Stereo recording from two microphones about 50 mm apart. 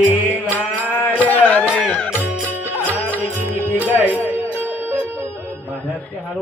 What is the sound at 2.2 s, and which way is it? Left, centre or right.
Music, right.